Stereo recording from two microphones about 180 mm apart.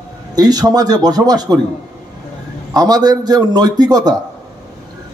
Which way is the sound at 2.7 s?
20° right (ahead or behind).